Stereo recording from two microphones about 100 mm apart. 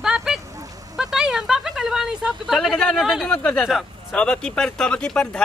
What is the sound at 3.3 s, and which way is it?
Speech, 10° left (ahead or behind).